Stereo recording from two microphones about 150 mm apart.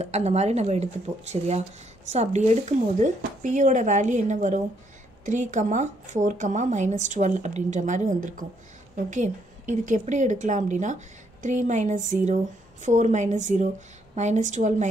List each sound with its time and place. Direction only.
0.0 s speech: 45° right (ahead or behind)